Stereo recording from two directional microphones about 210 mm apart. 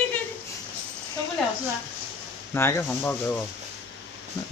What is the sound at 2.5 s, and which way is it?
Speech, 10° left (ahead or behind).